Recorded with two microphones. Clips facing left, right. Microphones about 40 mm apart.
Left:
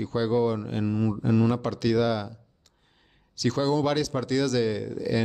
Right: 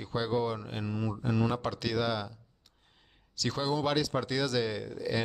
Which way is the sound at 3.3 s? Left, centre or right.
Centre.